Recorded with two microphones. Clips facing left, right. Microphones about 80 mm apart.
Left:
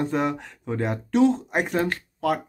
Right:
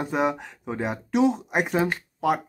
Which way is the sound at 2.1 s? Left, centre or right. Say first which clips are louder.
Right 1 dB; centre.